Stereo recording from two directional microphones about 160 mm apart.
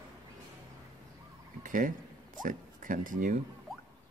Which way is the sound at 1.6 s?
55° right (ahead or behind).